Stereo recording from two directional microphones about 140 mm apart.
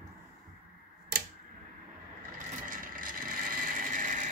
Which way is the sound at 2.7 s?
80° right.